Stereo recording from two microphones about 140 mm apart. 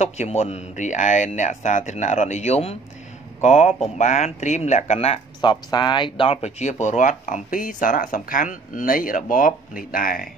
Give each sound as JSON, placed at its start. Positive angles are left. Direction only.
{"t": 0.0, "sound": "speech", "side_deg": 50}
{"t": 5.4, "sound": "speech", "side_deg": 35}